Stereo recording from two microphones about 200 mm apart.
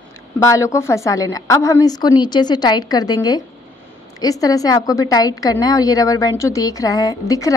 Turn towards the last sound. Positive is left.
turn(degrees=15)  # may be behind; listen again after turning